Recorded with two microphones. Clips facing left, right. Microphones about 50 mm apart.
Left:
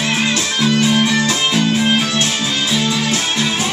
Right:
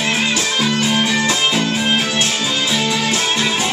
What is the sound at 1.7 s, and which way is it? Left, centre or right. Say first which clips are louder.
Music: left 2 dB; centre.